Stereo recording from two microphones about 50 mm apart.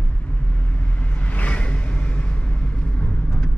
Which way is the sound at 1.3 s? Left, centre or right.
Left.